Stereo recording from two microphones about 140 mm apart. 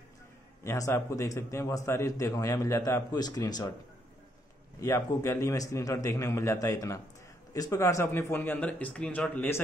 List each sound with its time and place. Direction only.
0.7 s a man's voice: 20° left (ahead or behind)
4.7 s a man's voice: 20° left (ahead or behind)